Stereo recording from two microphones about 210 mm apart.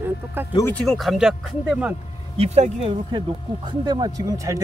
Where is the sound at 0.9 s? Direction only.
Centre (ahead or behind).